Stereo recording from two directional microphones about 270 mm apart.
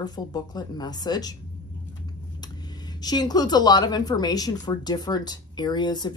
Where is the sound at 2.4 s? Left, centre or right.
Centre.